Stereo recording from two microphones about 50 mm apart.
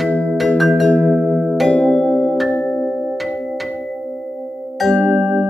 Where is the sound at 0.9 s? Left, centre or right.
Left; by 2.4 s centre.